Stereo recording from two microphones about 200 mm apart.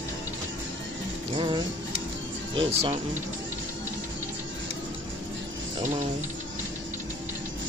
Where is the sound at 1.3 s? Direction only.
25° right (ahead or behind).